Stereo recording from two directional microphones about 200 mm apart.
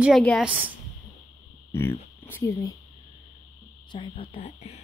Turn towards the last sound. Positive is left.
turn(degrees=30)  # may be behind; listen again after turning